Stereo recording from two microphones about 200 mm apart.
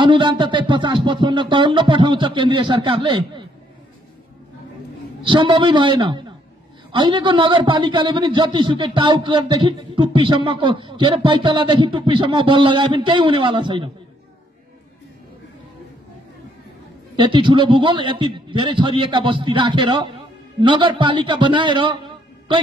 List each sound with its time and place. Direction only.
0.0 s a man's voice: 25° right (ahead or behind)
5.2 s a man's voice: 25° right (ahead or behind)
17.2 s a man's voice: 25° right (ahead or behind)